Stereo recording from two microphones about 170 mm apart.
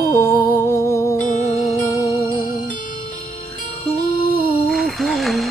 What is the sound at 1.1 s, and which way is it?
Music, 50° left (ahead or behind).